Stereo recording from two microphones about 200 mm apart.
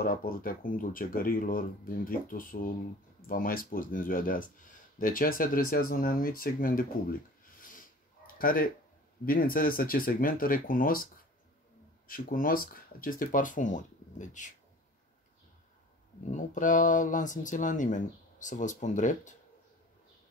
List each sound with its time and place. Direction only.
0.0 s speech: 45° left (ahead or behind)
7.6 s a sound: 45° left (ahead or behind)
9.2 s speech: 45° left (ahead or behind)
12.1 s speech: 45° left (ahead or behind)
16.3 s speech: 40° left (ahead or behind)